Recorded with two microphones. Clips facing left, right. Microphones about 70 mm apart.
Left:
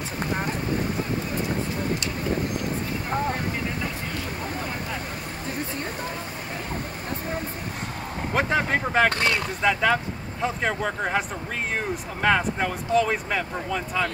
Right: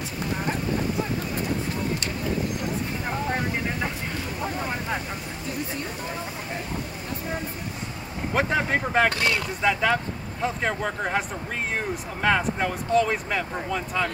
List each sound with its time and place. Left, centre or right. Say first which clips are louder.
0.2 s clip-clop: left 2 dB; left
8.3 s vehicle: even; centre
9.6 s speech: left 1 dB; centre